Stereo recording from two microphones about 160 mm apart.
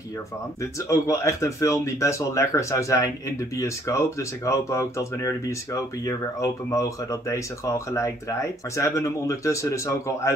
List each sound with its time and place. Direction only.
0.6 s speech: 20° left (ahead or behind)